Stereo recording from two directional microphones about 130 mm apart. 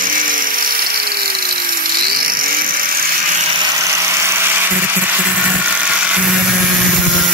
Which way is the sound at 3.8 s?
20° right (ahead or behind).